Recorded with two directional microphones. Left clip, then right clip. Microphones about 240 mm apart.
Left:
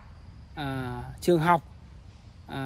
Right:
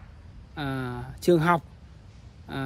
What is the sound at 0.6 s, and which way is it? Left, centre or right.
A woman's voice, centre.